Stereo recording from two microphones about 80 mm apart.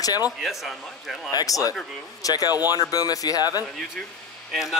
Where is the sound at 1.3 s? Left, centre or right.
Left.